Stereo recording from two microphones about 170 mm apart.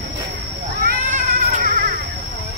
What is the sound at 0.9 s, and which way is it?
Cat, 55° right (ahead or behind).